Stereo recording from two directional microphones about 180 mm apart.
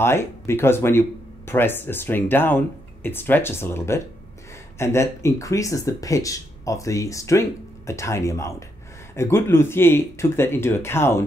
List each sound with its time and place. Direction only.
0.0 s speech: 15° left (ahead or behind)